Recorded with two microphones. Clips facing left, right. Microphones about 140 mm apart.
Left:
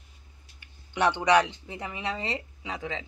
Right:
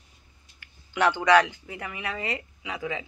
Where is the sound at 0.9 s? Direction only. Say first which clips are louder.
Right 2 dB; 25° left (ahead or behind).